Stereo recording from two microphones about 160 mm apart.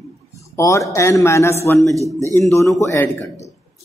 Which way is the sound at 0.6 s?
20° left (ahead or behind).